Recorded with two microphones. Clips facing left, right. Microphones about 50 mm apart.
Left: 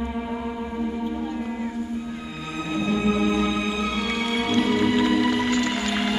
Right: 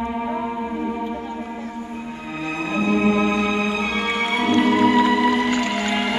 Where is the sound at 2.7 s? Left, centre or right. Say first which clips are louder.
Right 4 dB; right.